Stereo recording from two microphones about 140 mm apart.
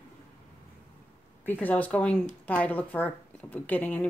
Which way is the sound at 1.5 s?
10° left (ahead or behind).